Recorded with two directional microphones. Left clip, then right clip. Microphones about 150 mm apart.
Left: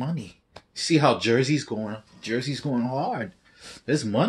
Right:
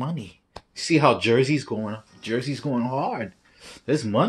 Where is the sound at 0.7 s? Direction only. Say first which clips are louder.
Right 2 dB; 10° left (ahead or behind).